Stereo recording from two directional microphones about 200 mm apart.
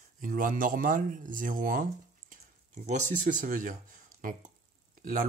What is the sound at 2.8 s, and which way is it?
Speech, 35° right (ahead or behind).